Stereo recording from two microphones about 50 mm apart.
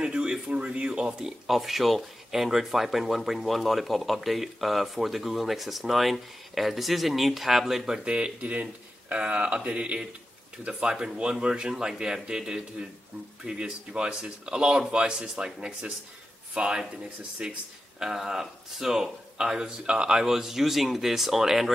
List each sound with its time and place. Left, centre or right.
0.0 s speech: centre
1.5 s speech: centre